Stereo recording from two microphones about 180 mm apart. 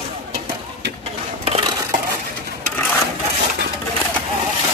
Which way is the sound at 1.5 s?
30° right (ahead or behind).